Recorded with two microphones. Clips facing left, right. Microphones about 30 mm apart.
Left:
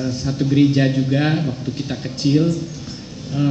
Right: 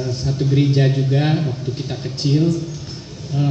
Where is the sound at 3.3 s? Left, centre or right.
Left.